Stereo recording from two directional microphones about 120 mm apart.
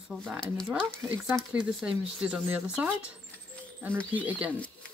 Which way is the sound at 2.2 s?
10° right (ahead or behind).